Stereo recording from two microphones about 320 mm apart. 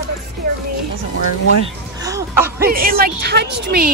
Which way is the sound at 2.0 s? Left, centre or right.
Centre.